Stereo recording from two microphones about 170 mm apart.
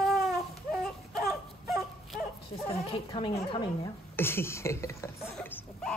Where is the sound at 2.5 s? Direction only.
35° left (ahead or behind).